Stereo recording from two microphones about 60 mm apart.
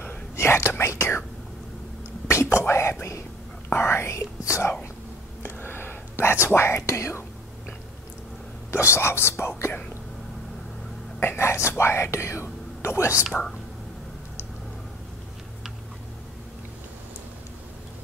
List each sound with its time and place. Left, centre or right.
0.4 s speech: left
2.2 s whispering: left
2.6 s speech: left
5.4 s whispering: left
6.4 s speech: left
8.7 s speech: left
11.1 s speech: left
13.3 s whispering: centre